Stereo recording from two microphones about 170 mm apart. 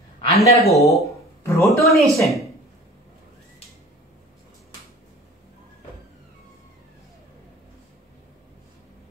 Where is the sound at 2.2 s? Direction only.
Centre (ahead or behind).